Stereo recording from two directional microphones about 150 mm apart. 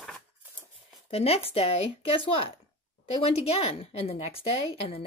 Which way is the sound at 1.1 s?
40° left (ahead or behind).